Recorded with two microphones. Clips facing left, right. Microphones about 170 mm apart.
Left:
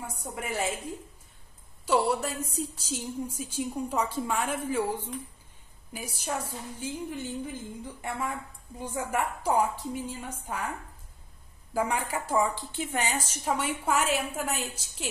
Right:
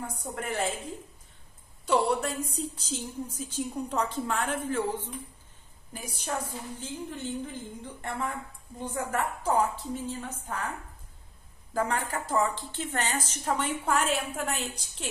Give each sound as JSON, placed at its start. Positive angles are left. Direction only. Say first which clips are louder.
{"t": 0.0, "sound": "a woman's voice", "louder": "right 1 dB", "side_deg": 10}
{"t": 1.9, "sound": "a woman's voice", "louder": "even", "side_deg": 0}
{"t": 11.7, "sound": "a woman's voice", "louder": "left 1 dB", "side_deg": 10}